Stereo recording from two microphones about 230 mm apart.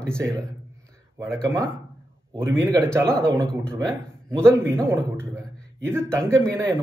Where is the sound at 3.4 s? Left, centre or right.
Centre.